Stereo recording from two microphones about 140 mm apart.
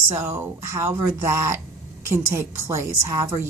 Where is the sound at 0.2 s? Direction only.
20° right (ahead or behind).